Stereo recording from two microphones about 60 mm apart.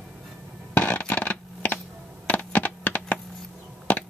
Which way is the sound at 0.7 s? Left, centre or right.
Left.